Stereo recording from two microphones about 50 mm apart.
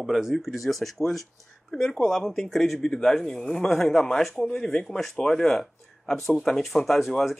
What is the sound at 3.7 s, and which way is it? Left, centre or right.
Speech, centre.